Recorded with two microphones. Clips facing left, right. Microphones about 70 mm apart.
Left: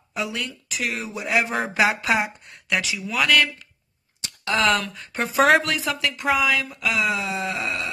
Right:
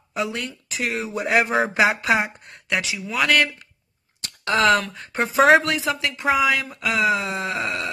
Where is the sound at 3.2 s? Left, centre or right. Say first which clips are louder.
Right 1 dB; right.